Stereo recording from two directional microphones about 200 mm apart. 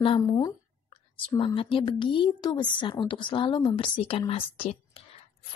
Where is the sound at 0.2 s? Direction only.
15° left (ahead or behind).